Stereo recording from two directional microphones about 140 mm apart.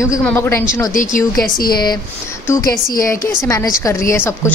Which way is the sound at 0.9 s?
75° left (ahead or behind).